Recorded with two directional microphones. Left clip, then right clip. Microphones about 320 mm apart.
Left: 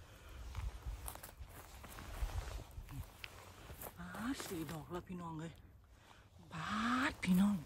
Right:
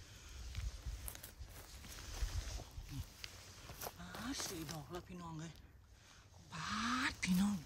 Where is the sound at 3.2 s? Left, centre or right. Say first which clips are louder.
Left 1 dB; centre.